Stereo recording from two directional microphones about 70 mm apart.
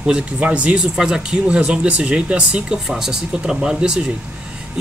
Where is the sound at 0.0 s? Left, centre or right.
Centre.